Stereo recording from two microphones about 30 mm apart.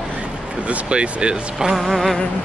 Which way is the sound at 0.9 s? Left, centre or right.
Right.